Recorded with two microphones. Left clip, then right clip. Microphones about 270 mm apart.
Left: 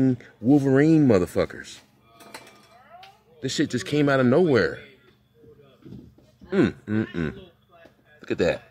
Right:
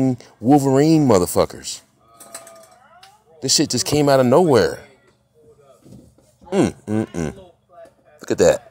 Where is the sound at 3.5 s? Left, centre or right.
Centre.